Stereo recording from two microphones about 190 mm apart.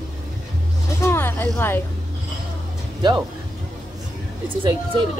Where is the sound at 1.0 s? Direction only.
10° left (ahead or behind).